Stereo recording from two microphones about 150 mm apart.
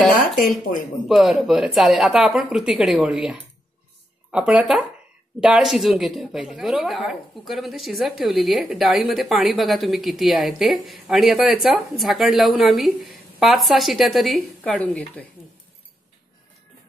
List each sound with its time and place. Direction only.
0.4 s speech: 65° left (ahead or behind)
1.0 s a woman's voice: centre (ahead or behind)
14.8 s speech: 10° left (ahead or behind)